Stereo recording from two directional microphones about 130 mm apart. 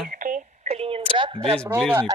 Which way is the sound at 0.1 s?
90° right.